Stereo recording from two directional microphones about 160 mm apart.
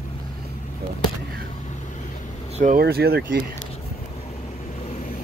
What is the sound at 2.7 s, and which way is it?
Speech, 75° right (ahead or behind).